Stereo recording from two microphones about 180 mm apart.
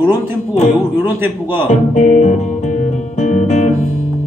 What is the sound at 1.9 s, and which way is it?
Music, 40° left (ahead or behind).